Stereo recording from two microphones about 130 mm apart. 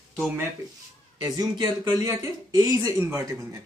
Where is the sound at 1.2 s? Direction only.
30° right (ahead or behind).